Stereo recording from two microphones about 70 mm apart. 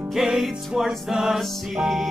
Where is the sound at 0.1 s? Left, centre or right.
Centre.